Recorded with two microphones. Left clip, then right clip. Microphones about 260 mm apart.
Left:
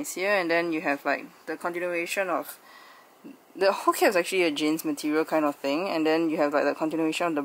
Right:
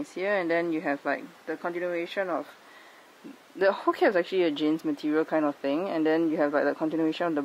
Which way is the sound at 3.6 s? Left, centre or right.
Centre.